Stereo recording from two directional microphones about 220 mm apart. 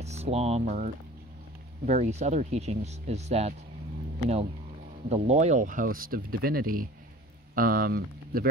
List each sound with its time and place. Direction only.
0.0 s speech: 30° right (ahead or behind)
5.1 s speech: 30° right (ahead or behind)